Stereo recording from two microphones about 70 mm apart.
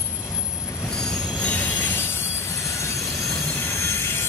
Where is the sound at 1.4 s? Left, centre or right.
Centre.